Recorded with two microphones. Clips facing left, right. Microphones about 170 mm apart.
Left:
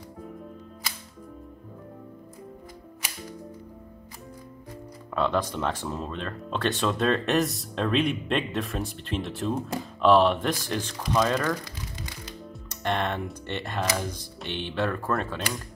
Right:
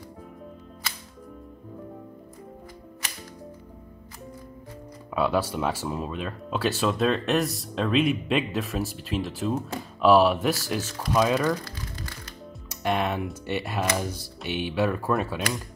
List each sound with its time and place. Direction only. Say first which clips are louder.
5.1 s speech: right 1 dB; 10° right (ahead or behind)
12.6 s speech: right 2 dB; 5° right (ahead or behind)